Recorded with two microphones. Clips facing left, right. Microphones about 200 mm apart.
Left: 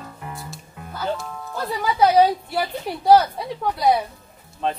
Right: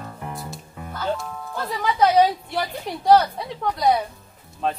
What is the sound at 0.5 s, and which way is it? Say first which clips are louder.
Music: right 1 dB; centre (ahead or behind).